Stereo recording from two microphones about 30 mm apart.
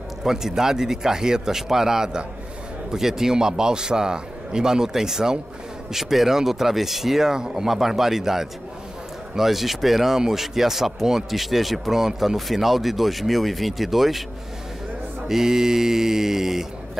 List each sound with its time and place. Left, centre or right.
0.2 s a man's voice: centre
10.1 s speech: centre
15.2 s speech: centre